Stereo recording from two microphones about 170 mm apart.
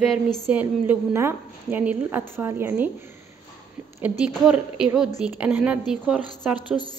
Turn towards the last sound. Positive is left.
turn(degrees=-5)  # may be behind; listen again after turning